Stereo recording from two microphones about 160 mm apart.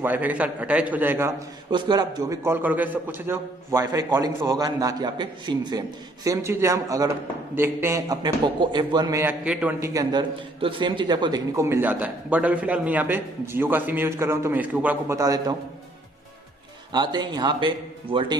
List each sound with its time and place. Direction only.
0.0 s a man's voice: 10° right (ahead or behind)
1.7 s a man's voice: 25° right (ahead or behind)
9.2 s a man's voice: 10° right (ahead or behind)
10.6 s a man's voice: 30° right (ahead or behind)
16.9 s a man's voice: 25° right (ahead or behind)